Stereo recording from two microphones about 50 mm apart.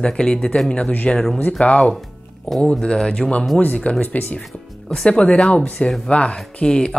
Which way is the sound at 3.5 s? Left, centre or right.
Left.